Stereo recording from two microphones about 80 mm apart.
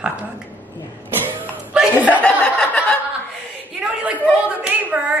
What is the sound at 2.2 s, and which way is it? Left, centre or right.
Chuckle, centre.